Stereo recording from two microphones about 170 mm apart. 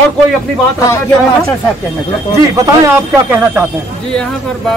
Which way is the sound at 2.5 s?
20° right (ahead or behind).